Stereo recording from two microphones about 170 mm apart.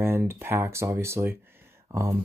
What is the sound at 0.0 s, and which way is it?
Speech, 15° right (ahead or behind).